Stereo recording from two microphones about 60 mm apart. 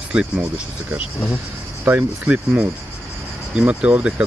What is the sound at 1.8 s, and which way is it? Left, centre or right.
Speech, right.